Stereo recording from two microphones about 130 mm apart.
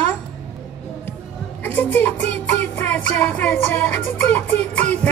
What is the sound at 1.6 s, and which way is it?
Speech, 15° left (ahead or behind).